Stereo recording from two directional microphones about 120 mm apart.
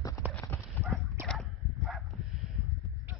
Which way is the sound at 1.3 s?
Centre (ahead or behind).